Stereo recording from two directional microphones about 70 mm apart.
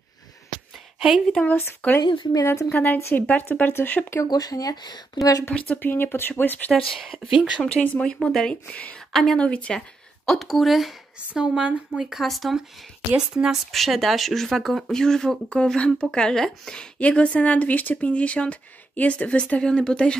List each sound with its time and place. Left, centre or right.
0.9 s a woman's voice: centre
1.5 s a woman's voice: left
3.3 s speech: left
4.3 s speech: left
5.5 s speech: centre
5.8 s speech: left
6.7 s speech: centre
8.2 s speech: centre
9.1 s speech: centre
9.4 s speech: centre
9.8 s a woman's voice: centre
11.4 s speech: centre
13.1 s speech: centre
13.7 s speech: centre